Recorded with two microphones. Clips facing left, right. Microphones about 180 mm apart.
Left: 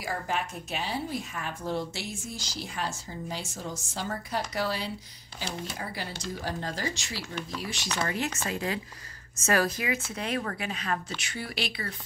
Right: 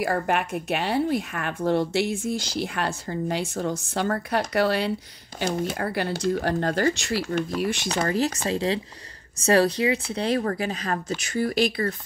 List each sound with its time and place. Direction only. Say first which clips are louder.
0.0 s a woman's voice: right 8 dB; 65° right (ahead or behind)
7.9 s speech: right 4 dB; 35° right (ahead or behind)